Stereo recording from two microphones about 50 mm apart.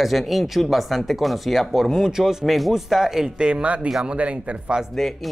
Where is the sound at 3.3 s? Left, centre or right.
Right.